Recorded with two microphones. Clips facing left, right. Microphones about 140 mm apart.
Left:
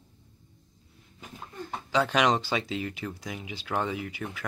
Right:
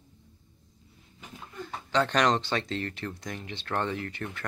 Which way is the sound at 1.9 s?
5° left (ahead or behind).